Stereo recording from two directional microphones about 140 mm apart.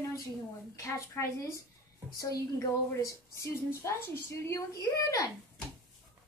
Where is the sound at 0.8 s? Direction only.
20° left (ahead or behind).